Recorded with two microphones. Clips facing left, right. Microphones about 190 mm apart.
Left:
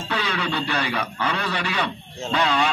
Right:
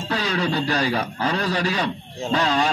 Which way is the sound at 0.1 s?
40° right (ahead or behind).